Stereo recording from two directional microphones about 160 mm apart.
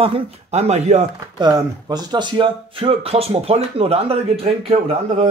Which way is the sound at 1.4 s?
25° right (ahead or behind).